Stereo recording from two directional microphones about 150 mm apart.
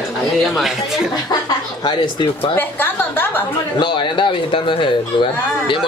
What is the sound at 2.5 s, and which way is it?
Speech, 15° left (ahead or behind).